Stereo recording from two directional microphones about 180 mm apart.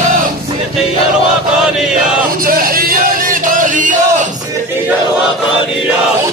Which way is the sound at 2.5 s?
55° right (ahead or behind).